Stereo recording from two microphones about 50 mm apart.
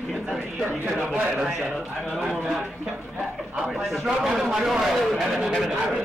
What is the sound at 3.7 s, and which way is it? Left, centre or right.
A man's voice, centre.